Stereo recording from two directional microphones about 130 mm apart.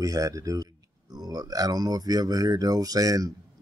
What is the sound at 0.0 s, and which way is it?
A man's voice, 25° right (ahead or behind).